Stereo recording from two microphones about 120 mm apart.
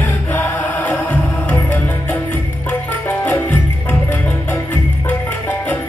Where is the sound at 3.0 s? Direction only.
15° left (ahead or behind).